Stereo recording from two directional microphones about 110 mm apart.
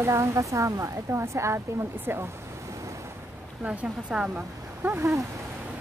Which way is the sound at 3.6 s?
10° right (ahead or behind).